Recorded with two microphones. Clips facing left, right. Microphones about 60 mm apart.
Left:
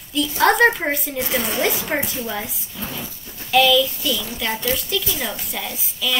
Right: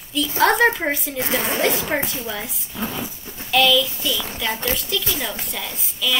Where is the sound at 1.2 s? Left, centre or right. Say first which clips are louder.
Even; right.